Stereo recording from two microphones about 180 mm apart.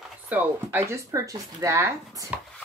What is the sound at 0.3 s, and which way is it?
Speech, 10° right (ahead or behind).